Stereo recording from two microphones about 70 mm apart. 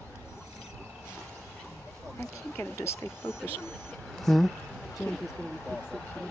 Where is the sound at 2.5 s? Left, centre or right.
Left.